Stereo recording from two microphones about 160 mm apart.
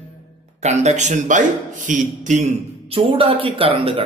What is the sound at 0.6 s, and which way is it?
A man's voice, 45° right (ahead or behind).